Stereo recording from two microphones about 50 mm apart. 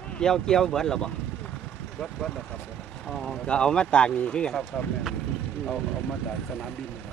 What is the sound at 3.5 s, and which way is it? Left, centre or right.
Speech, left.